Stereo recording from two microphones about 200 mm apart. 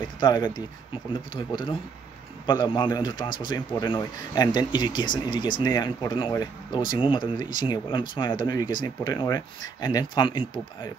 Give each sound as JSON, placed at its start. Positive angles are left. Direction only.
{"t": 0.2, "sound": "speech", "side_deg": 20}